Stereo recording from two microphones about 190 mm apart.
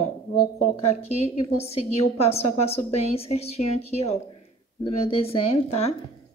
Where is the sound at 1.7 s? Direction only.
35° left (ahead or behind).